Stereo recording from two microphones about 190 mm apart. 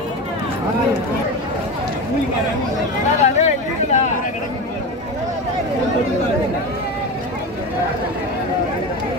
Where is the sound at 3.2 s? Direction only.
35° left (ahead or behind).